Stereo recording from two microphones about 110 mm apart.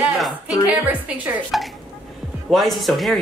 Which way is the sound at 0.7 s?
15° right (ahead or behind).